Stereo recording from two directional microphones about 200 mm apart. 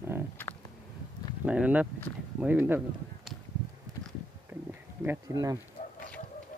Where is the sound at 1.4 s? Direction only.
5° right (ahead or behind).